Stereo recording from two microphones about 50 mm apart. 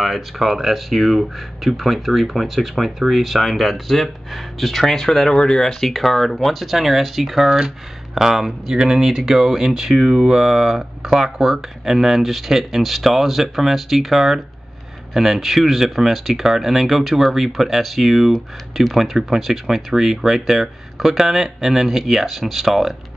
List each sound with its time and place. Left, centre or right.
0.0 s speech: centre
5.3 s speech: centre
5.7 s speech: centre